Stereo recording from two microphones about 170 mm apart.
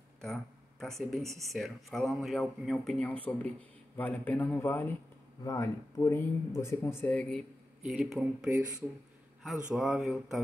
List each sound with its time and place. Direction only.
0.2 s speech: 5° left (ahead or behind)
7.1 s speech: 5° left (ahead or behind)
9.7 s speech: centre (ahead or behind)